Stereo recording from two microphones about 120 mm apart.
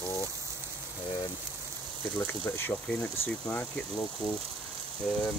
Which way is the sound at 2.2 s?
20° left (ahead or behind).